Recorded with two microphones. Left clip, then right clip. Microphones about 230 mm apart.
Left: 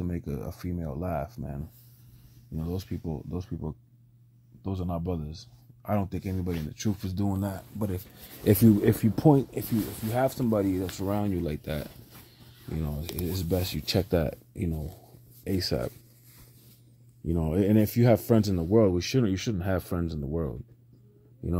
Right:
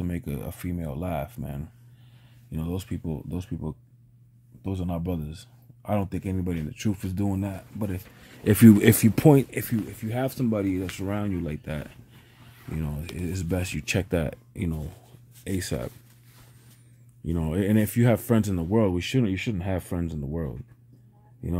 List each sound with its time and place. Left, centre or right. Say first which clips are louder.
0.0 s speech: right 1 dB; centre
7.4 s speech: even; centre
8.6 s speech: right 10 dB; right
10.1 s speech: left 2 dB; centre
10.8 s speech: even; centre
15.4 s speech: left 2 dB; centre
17.3 s speech: left 1 dB; centre